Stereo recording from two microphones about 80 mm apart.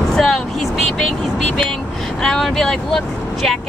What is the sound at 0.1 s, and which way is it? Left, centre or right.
Vehicle, centre.